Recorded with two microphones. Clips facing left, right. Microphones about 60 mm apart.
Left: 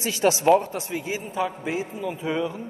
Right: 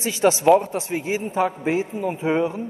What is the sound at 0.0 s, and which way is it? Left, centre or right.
A man's voice, right.